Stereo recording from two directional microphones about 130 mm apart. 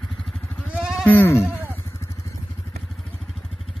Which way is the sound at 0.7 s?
5° right (ahead or behind).